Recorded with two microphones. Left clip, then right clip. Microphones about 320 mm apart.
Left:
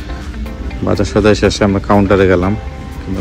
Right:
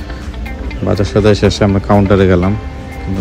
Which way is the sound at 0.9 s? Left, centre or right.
Centre.